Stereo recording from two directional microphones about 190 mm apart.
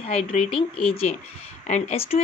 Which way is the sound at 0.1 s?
30° left (ahead or behind).